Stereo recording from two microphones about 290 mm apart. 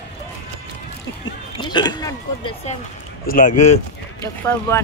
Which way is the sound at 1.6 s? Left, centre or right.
Centre.